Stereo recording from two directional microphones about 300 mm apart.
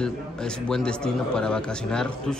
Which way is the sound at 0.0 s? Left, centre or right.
Centre.